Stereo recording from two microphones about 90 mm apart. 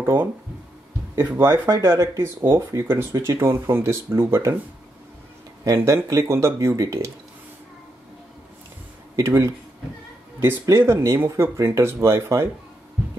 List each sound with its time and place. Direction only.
0.0 s speech: 25° right (ahead or behind)
5.8 s speech: 25° right (ahead or behind)
9.1 s speech: 35° right (ahead or behind)
10.6 s speech: 30° right (ahead or behind)